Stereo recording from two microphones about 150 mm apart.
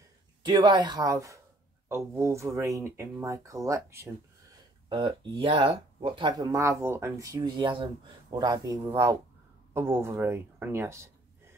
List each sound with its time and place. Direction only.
0.4 s speech: 30° right (ahead or behind)
4.8 s speech: 35° right (ahead or behind); by 11.1 s 20° right (ahead or behind)